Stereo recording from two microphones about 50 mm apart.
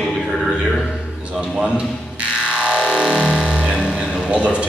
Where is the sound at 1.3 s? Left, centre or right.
Centre.